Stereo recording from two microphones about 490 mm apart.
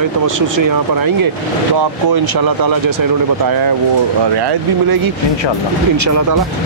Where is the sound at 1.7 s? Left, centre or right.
Right.